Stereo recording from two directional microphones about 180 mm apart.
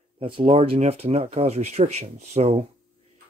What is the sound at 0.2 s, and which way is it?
Speech, 30° right (ahead or behind).